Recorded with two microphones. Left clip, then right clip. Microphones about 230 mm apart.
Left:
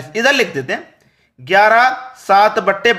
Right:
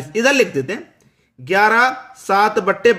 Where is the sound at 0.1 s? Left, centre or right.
Centre.